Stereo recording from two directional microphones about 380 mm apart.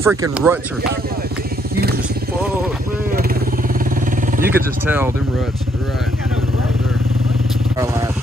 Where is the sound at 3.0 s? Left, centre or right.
Right.